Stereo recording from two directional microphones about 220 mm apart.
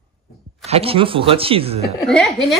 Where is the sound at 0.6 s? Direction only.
25° right (ahead or behind).